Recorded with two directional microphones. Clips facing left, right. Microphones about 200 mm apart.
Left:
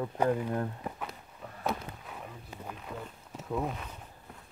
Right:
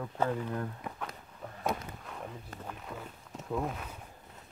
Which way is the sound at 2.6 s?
5° left (ahead or behind).